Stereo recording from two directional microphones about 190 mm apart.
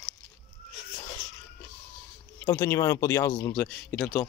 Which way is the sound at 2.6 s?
15° left (ahead or behind).